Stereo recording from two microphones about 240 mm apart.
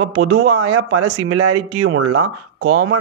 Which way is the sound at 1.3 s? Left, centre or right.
Right.